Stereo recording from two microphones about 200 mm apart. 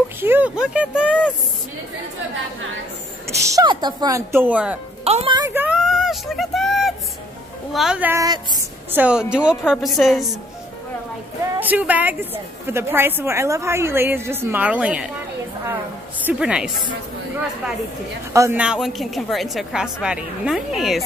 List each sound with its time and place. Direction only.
0.2 s a woman's voice: 10° right (ahead or behind)
3.3 s a woman's voice: 15° right (ahead or behind)
5.0 s a woman's voice: 30° right (ahead or behind)
5.5 s a sound: 5° right (ahead or behind)
7.7 s a woman's voice: 5° right (ahead or behind); by 8.5 s 20° right (ahead or behind)
8.9 s a woman's voice: 5° right (ahead or behind)
11.6 s a woman's voice: 10° right (ahead or behind)
16.3 s a woman's voice: 5° right (ahead or behind)
18.3 s a woman's voice: 10° right (ahead or behind)